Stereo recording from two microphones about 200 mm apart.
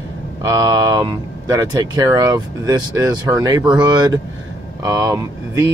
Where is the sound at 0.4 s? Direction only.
20° right (ahead or behind).